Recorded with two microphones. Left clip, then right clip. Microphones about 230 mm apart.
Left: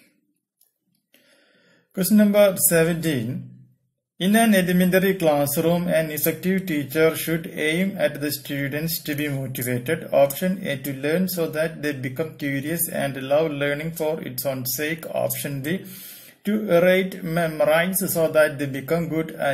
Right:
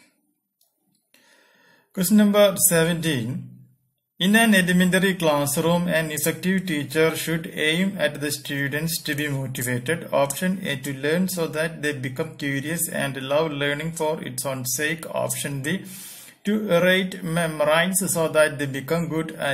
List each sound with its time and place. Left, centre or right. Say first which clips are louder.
2.0 s a man's voice: left 1 dB; centre